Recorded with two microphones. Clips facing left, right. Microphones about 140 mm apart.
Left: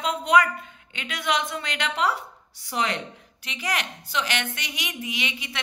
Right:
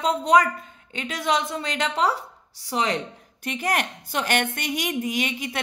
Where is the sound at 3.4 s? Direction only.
50° right (ahead or behind).